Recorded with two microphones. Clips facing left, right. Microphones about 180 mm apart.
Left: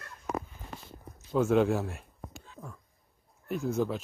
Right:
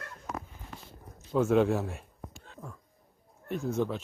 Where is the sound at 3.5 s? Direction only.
Centre (ahead or behind).